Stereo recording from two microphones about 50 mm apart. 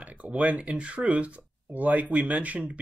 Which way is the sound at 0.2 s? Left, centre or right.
Right.